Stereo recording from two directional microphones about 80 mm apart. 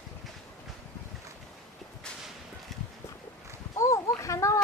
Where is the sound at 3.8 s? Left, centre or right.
Left.